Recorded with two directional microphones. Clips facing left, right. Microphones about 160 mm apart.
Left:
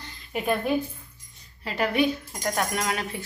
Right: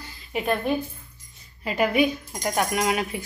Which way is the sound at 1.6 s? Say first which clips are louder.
Right 2 dB; 10° right (ahead or behind).